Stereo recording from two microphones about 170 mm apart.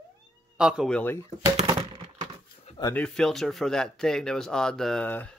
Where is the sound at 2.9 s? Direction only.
5° left (ahead or behind).